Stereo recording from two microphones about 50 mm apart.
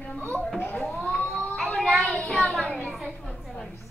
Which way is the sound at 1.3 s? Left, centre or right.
Centre.